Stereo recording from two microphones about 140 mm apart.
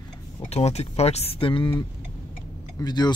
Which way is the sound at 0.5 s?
50° left (ahead or behind).